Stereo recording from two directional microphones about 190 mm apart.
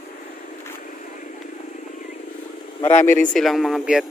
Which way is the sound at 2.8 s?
35° left (ahead or behind).